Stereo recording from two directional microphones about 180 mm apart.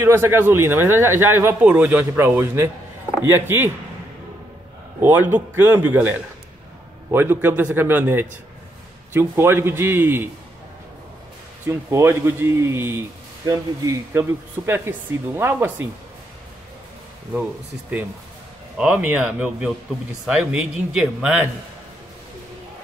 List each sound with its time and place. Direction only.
0.0 s speech: 15° right (ahead or behind)
5.0 s speech: 10° right (ahead or behind)
11.6 s speech: 15° right (ahead or behind)
18.8 s speech: 5° right (ahead or behind)